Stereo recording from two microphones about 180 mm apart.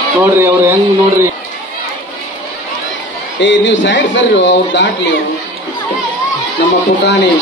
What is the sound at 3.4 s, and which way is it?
A man's voice, 85° left.